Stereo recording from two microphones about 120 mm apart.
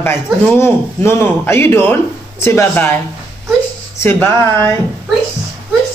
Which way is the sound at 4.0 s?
20° left (ahead or behind).